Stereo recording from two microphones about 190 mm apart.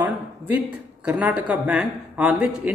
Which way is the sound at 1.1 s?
5° right (ahead or behind).